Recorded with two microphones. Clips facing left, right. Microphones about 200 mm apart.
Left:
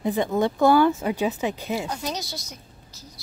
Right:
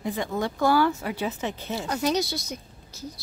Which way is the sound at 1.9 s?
65° right (ahead or behind).